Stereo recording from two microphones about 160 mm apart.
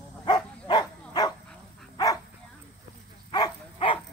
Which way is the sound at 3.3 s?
30° left (ahead or behind).